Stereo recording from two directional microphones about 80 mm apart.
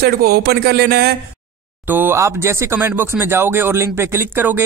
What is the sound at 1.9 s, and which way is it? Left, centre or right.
Speech, right.